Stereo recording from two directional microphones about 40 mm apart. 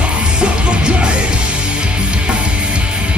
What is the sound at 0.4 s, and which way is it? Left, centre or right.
Music, right.